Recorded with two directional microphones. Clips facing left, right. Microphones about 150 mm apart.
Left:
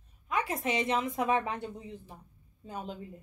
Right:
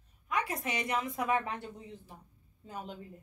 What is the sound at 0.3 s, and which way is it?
A woman's voice, 25° left (ahead or behind).